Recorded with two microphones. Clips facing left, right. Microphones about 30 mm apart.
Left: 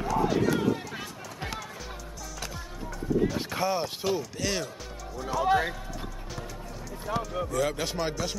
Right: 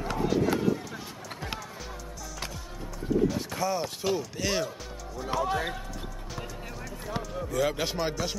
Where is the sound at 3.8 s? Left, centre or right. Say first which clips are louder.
Even; centre.